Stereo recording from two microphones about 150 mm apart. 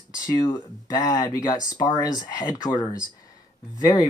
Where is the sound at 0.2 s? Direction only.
25° left (ahead or behind).